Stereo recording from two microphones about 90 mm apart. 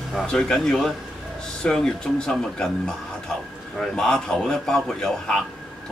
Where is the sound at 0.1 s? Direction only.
5° left (ahead or behind).